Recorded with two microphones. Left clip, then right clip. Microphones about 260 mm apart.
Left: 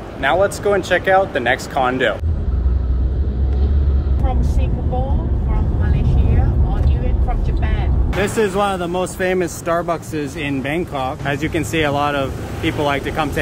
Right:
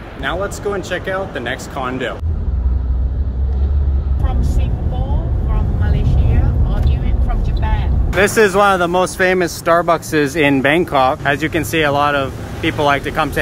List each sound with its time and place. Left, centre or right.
0.2 s speech: centre
8.2 s speech: centre